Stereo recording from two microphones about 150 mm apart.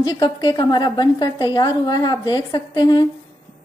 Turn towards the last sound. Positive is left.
turn(degrees=30)  # may be behind; listen again after turning